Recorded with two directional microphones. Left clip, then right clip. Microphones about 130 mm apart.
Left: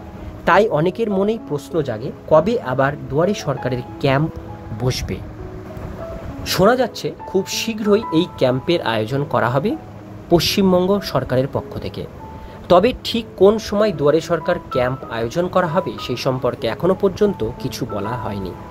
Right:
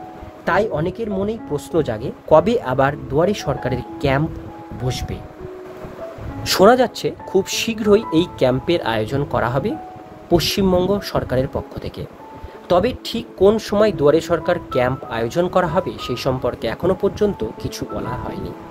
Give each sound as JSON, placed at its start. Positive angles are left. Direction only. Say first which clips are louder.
{"t": 0.5, "sound": "speech", "louder": "left 4 dB", "side_deg": 20}
{"t": 1.5, "sound": "speech", "louder": "right 1 dB", "side_deg": -15}
{"t": 4.8, "sound": "speech", "louder": "left 3 dB", "side_deg": 15}
{"t": 6.4, "sound": "speech", "louder": "right 3 dB", "side_deg": -25}
{"t": 13.6, "sound": "speech", "louder": "right 2 dB", "side_deg": -10}